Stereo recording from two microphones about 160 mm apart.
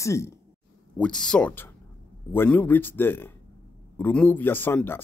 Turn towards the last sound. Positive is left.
turn(degrees=15)  # may be behind; listen again after turning